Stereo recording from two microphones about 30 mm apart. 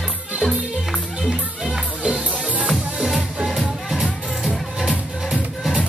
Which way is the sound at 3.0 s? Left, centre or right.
Centre.